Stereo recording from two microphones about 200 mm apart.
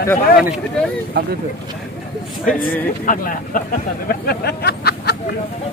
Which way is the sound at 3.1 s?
45° left (ahead or behind).